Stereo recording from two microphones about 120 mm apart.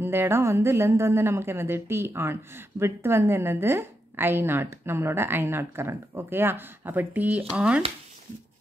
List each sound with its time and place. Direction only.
0.0 s a woman's voice: 20° right (ahead or behind)